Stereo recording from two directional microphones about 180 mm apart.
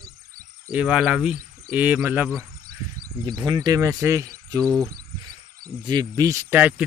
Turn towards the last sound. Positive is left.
turn(degrees=-5)  # may be behind; listen again after turning